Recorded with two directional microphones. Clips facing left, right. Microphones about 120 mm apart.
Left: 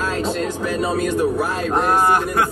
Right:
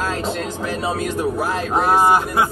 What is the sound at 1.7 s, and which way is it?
Speech, 10° right (ahead or behind).